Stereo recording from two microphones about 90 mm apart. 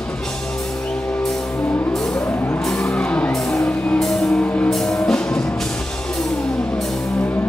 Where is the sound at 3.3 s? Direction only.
5° left (ahead or behind).